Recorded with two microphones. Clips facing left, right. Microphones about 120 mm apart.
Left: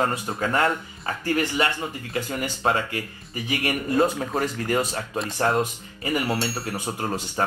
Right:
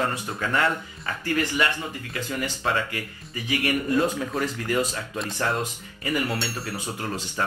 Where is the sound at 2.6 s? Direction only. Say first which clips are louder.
Left 3 dB; 30° left (ahead or behind).